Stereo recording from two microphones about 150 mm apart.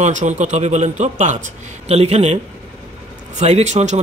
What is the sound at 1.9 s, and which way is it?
Speech, 45° right (ahead or behind).